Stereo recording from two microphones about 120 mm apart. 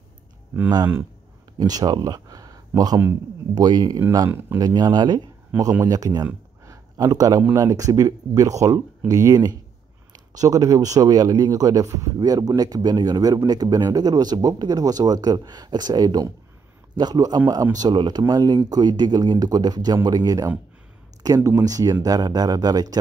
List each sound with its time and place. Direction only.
1.6 s speech: 30° right (ahead or behind)
4.3 s speech: 15° right (ahead or behind)
4.6 s speech: 35° right (ahead or behind)
5.5 s speech: 15° right (ahead or behind)
5.9 s speech: 30° right (ahead or behind)
6.6 s a sound: 30° right (ahead or behind)
7.5 s speech: 30° right (ahead or behind)